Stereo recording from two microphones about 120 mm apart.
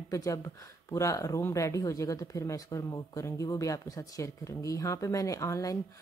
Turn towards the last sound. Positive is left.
turn(degrees=25)  # may be behind; listen again after turning